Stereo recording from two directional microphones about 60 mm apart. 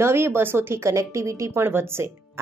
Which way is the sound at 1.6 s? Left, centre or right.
Right.